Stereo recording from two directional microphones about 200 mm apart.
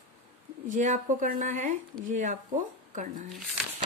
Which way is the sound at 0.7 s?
40° right (ahead or behind).